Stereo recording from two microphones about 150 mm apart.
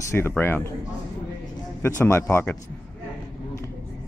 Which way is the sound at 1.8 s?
15° left (ahead or behind).